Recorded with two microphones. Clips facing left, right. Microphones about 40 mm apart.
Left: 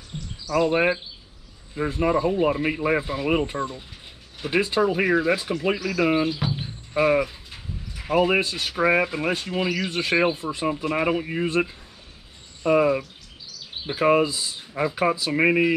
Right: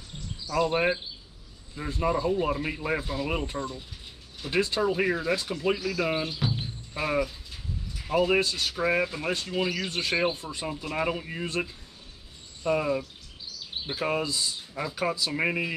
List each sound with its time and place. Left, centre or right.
0.6 s speech: centre
5.9 s cricket: left
8.7 s speech: left
14.0 s speech: left
14.3 s speech: centre